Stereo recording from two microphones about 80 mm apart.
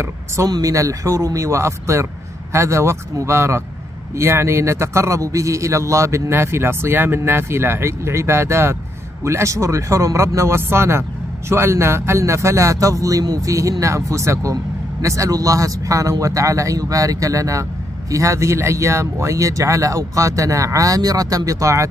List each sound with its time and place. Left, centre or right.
0.5 s speech: right